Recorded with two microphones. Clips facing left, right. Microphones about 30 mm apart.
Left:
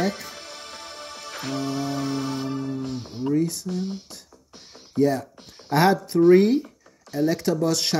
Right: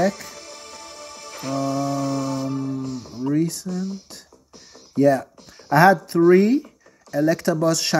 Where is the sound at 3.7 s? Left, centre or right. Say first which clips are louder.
Right 1 dB; left.